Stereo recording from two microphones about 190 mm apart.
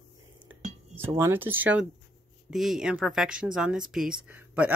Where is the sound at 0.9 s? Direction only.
10° right (ahead or behind).